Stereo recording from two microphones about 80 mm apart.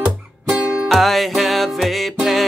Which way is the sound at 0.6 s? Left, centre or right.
Centre.